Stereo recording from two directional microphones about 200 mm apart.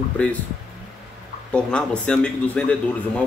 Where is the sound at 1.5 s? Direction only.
5° left (ahead or behind).